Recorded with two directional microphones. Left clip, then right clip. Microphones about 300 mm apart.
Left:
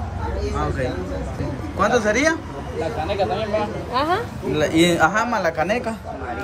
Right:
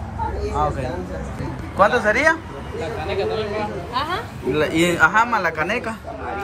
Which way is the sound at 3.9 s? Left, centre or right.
Left.